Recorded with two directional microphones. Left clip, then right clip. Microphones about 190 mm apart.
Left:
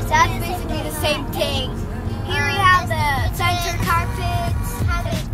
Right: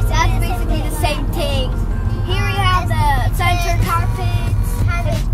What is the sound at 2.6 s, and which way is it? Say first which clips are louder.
Vehicle: left 2 dB; 15° right (ahead or behind).